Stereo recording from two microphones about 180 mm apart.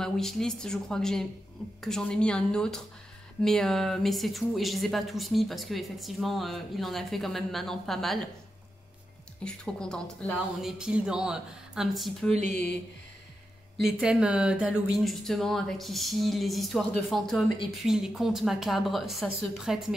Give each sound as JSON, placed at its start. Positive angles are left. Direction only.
{"t": 0.0, "sound": "speech", "side_deg": 0}
{"t": 9.4, "sound": "speech", "side_deg": 5}
{"t": 12.3, "sound": "speech", "side_deg": -40}
{"t": 13.7, "sound": "speech", "side_deg": 0}